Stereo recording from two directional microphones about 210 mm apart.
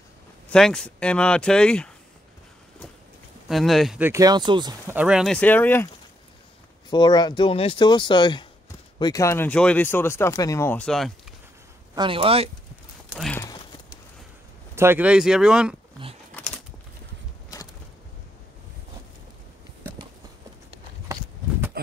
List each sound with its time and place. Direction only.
0.5 s speech: 5° left (ahead or behind)
3.4 s speech: centre (ahead or behind)
4.1 s speech: 20° right (ahead or behind)
4.9 s speech: 5° right (ahead or behind)
6.9 s speech: 20° left (ahead or behind); by 11.1 s 5° left (ahead or behind)
11.9 s speech: 25° right (ahead or behind)
13.3 s clip-clop: 10° left (ahead or behind)
14.8 s speech: 10° right (ahead or behind)